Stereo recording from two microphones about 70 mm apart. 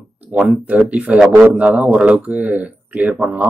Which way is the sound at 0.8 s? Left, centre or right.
Centre.